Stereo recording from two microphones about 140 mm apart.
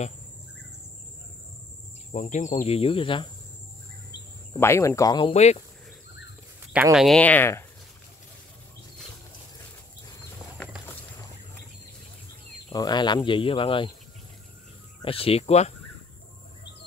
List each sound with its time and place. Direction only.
2.1 s speech: 60° left (ahead or behind)
2.7 s speech: 40° left (ahead or behind)
4.6 s speech: 20° left (ahead or behind)
5.2 s speech: 50° left (ahead or behind)
6.7 s speech: 5° right (ahead or behind)
7.2 s speech: 10° left (ahead or behind)
12.7 s speech: 30° left (ahead or behind)
15.0 s speech: 40° left (ahead or behind)